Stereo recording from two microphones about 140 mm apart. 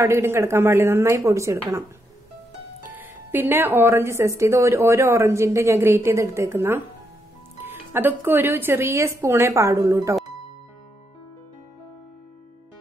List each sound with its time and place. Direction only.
0.0 s speech: 20° right (ahead or behind)
2.9 s speech: 15° right (ahead or behind)